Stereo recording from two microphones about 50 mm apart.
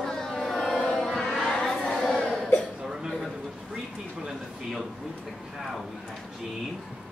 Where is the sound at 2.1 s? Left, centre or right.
Centre.